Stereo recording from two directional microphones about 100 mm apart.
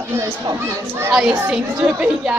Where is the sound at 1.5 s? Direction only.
10° right (ahead or behind).